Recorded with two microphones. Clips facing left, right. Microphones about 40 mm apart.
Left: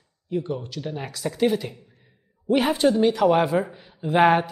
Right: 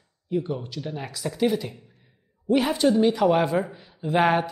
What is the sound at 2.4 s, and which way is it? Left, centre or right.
Speech, left.